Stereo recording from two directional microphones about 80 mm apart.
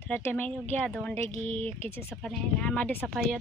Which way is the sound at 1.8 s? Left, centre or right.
Left.